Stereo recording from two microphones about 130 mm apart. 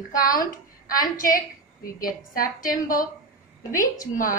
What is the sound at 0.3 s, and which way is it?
A woman's voice, 90° left.